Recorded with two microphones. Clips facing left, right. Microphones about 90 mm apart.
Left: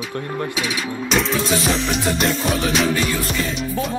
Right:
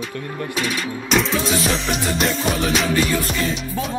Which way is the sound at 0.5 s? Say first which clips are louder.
Even; centre (ahead or behind).